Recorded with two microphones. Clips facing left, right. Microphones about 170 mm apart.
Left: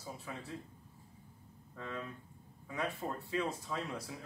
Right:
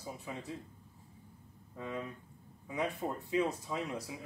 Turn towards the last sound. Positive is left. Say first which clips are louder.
# right 2 dB
turn(degrees=-15)  # may be behind; listen again after turning